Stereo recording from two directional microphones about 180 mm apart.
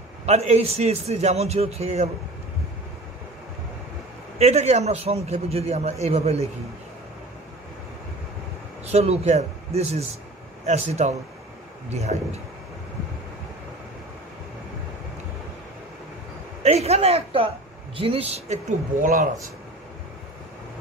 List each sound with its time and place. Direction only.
0.3 s a man's voice: 35° right (ahead or behind)
4.4 s a man's voice: 35° right (ahead or behind)
8.8 s a man's voice: 35° right (ahead or behind)
16.6 s a man's voice: 35° right (ahead or behind)